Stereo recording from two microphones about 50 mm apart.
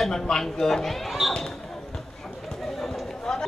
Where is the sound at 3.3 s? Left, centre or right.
Centre.